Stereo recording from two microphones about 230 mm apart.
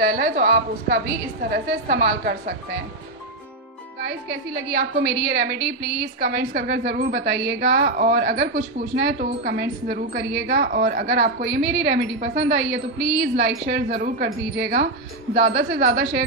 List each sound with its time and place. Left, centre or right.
0.0 s a woman's voice: right
4.0 s a woman's voice: right